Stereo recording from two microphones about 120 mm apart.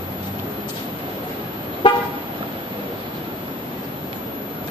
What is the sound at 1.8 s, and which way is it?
Car, 45° left (ahead or behind).